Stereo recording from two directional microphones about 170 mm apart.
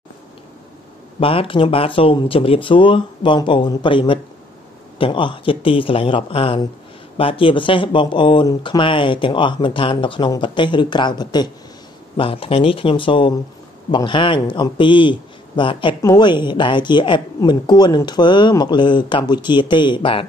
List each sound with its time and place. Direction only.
1.2 s speech: 35° left (ahead or behind)